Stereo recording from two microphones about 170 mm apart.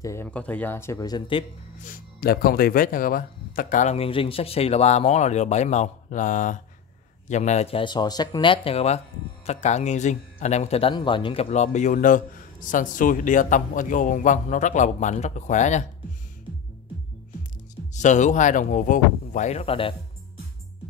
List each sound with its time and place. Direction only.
0.0 s speech: 15° left (ahead or behind)
1.8 s speech: 55° left (ahead or behind); by 11.4 s 30° left (ahead or behind)
11.5 s speech: 45° left (ahead or behind)
17.9 s speech: 45° left (ahead or behind)